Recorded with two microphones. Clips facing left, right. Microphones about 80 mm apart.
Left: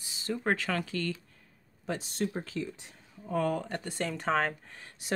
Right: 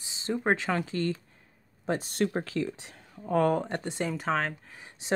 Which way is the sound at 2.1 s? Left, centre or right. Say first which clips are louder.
Right 4 dB; right.